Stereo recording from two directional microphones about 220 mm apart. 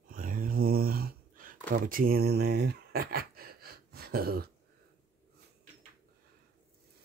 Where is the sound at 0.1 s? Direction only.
40° right (ahead or behind).